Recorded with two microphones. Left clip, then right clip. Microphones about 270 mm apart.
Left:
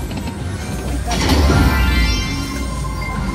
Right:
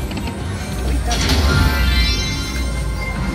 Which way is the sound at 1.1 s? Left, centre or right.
Left.